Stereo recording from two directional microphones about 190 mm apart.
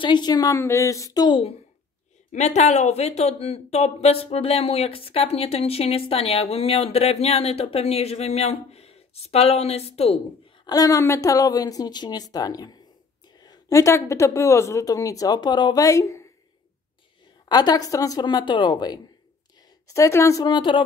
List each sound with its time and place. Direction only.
0.0 s a woman's voice: 25° left (ahead or behind)
2.3 s speech: 35° left (ahead or behind)
10.6 s a woman's voice: 20° left (ahead or behind)
17.5 s a woman's voice: 20° left (ahead or behind)